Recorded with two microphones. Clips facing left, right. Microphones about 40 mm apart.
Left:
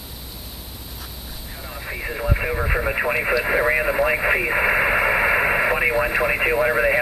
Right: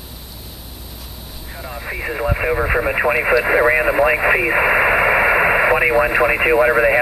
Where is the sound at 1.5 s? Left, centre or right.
Centre.